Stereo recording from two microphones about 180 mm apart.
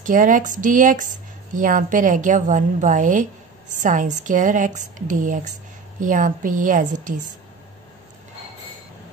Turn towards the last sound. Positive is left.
turn(degrees=-45)  # may be behind; listen again after turning